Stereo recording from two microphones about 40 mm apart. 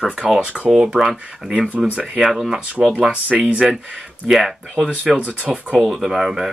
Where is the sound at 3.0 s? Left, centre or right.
Right.